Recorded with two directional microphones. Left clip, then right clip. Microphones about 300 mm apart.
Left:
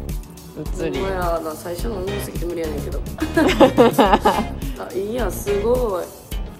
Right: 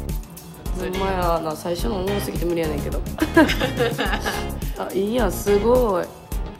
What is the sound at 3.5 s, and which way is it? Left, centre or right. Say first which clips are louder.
Music: left 9 dB; centre.